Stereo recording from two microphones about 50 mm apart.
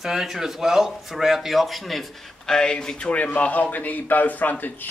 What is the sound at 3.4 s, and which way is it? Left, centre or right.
A man's voice, left.